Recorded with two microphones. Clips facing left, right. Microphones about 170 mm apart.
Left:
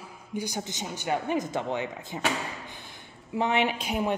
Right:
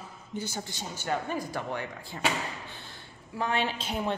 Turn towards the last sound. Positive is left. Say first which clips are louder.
# left 3 dB
turn(degrees=10)  # may be behind; listen again after turning